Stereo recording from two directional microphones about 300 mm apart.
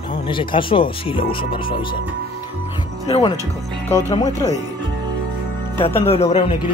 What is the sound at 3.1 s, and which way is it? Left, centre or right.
Speech, centre.